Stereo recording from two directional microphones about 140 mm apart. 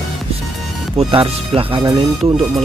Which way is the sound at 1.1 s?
40° right (ahead or behind).